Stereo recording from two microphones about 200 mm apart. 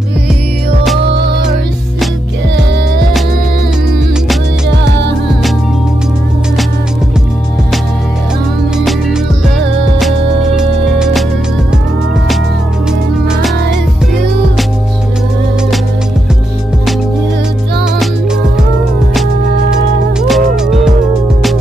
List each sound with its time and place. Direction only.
1.1 s music: 55° right (ahead or behind)
8.7 s music: 5° right (ahead or behind)
10.5 s music: 5° right (ahead or behind)
20.2 s music: centre (ahead or behind)